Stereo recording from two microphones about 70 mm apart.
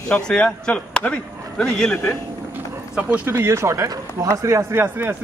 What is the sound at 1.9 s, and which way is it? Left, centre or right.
Speech, left.